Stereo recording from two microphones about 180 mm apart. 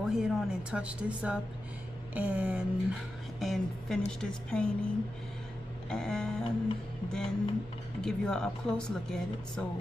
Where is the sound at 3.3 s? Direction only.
Centre (ahead or behind).